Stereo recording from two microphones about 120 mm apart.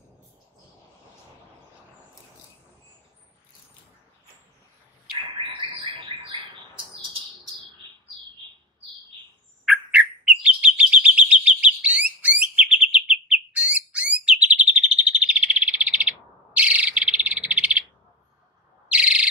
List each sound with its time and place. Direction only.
5.1 s bird: 45° right (ahead or behind)
9.7 s chirp: 5° right (ahead or behind)
13.5 s bird: 10° right (ahead or behind)
14.2 s chirp: 10° right (ahead or behind)
18.9 s owl: 10° right (ahead or behind)